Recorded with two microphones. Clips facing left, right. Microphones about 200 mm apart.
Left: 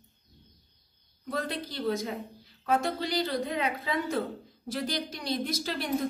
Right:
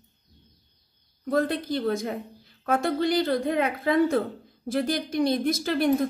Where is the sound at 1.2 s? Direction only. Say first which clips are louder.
Right 8 dB; 50° right (ahead or behind).